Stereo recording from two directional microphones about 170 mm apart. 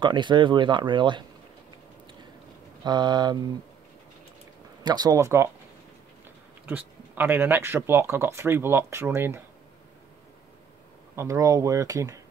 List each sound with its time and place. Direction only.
0.0 s speech: 25° right (ahead or behind)
2.8 s speech: 25° right (ahead or behind)
4.8 s speech: 25° right (ahead or behind)
6.7 s speech: 10° right (ahead or behind)
11.1 s speech: 20° right (ahead or behind)